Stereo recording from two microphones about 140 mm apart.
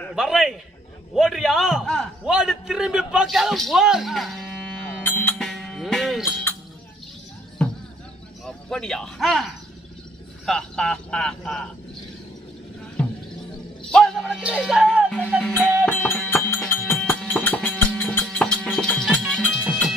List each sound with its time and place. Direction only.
0.1 s a man's voice: centre (ahead or behind)
5.0 s music: 15° left (ahead or behind)
5.4 s music: 5° left (ahead or behind)
8.5 s a man's voice: 5° left (ahead or behind)
13.0 s a sound: 5° left (ahead or behind)
13.8 s music: 5° left (ahead or behind)